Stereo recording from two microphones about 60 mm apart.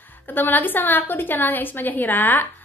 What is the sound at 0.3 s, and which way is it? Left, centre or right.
A woman's voice, left.